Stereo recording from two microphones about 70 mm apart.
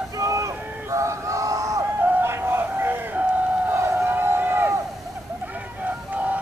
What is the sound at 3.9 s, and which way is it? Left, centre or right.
Vehicle, right.